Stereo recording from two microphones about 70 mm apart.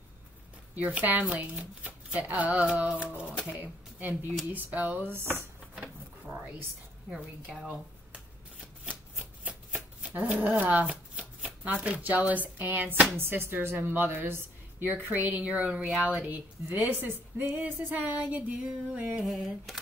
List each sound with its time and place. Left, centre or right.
0.7 s a woman's voice: right
7.1 s a woman's voice: centre
9.2 s shuffling cards: centre
13.2 s a woman's voice: right
19.2 s speech: centre